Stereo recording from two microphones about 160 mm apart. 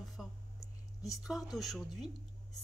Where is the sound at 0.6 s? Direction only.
20° left (ahead or behind).